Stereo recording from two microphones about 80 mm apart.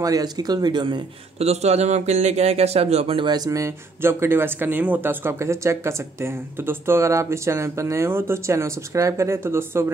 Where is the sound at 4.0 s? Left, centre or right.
Right.